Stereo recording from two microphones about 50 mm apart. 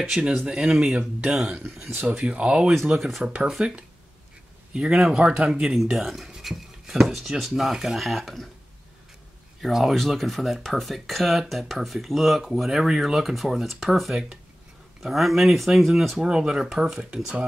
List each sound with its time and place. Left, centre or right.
0.1 s speech: centre
2.0 s speech: right
2.9 s speech: centre
9.6 s speech: centre
16.2 s speech: centre